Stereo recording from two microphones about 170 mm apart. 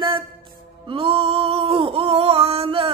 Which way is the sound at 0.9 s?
35° right (ahead or behind).